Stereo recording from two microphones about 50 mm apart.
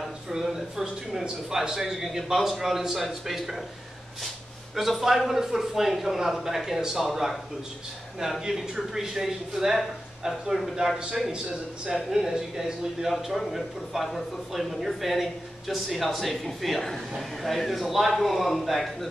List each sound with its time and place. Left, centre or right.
0.3 s speech: centre
4.7 s speech: centre